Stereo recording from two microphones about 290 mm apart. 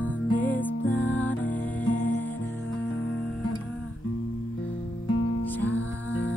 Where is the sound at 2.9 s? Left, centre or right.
Left.